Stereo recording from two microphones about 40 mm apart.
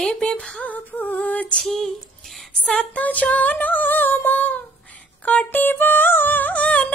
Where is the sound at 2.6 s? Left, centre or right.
Left.